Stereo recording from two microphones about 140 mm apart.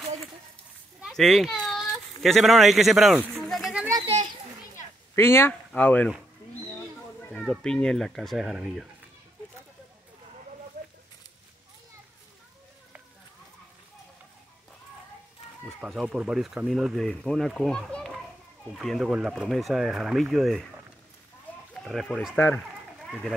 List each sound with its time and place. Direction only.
1.0 s a sound: centre (ahead or behind)
4.0 s children playing: 45° right (ahead or behind)
5.1 s speech: 15° left (ahead or behind)
7.2 s speech: 5° left (ahead or behind)
15.8 s speech: 5° right (ahead or behind)
21.7 s speech: 5° left (ahead or behind)
22.9 s a sound: 5° left (ahead or behind)